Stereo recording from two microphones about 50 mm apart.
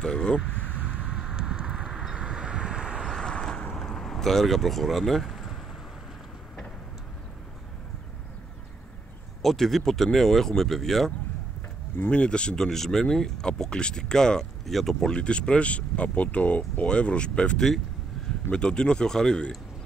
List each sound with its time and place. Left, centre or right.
0.0 s speech: centre
1.3 s vehicle: centre
3.1 s vehicle: centre
9.4 s speech: centre
12.1 s speech: left
12.5 s speech: centre
15.0 s speech: left